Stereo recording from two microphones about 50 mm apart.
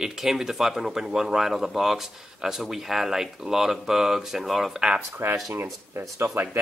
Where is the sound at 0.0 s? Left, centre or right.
Centre.